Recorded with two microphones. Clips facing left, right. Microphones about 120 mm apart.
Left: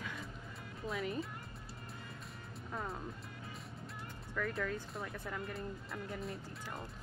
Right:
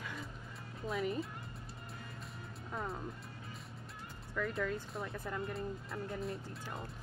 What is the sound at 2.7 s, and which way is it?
Speech, centre (ahead or behind).